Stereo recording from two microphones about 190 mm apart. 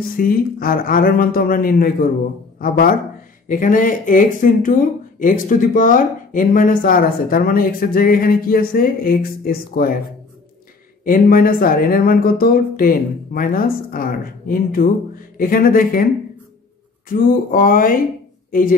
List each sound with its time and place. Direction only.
0.2 s speech: 50° left (ahead or behind)
11.1 s speech: 45° left (ahead or behind)
17.1 s speech: 45° left (ahead or behind)